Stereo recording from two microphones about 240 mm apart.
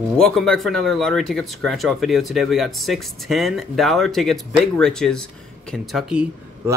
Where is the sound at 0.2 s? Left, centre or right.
Centre.